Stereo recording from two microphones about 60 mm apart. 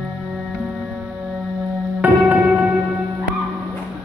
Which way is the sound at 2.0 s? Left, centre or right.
Right.